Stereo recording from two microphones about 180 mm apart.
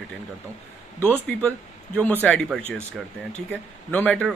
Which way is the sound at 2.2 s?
5° left (ahead or behind).